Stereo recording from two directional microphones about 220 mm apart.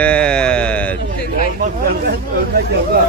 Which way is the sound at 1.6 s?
45° right (ahead or behind).